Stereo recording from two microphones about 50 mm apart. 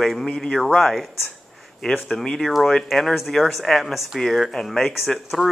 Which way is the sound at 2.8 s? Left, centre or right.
Centre.